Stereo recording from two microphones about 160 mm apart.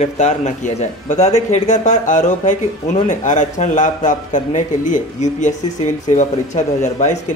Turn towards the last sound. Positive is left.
turn(degrees=45)  # may be behind; listen again after turning